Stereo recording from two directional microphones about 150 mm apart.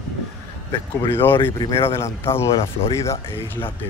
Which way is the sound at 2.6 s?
40° left (ahead or behind).